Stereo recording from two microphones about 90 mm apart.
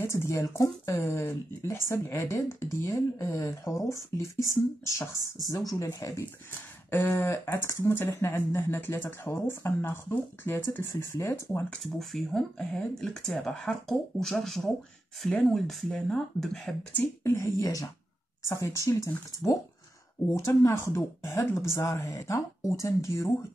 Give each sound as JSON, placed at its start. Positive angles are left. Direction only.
{"t": 0.0, "sound": "speech", "side_deg": 30}
{"t": 11.8, "sound": "speech", "side_deg": 0}
{"t": 17.2, "sound": "speech", "side_deg": 30}